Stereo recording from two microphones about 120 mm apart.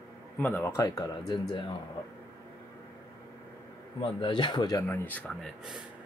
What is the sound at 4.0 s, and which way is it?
Speech, 40° left (ahead or behind).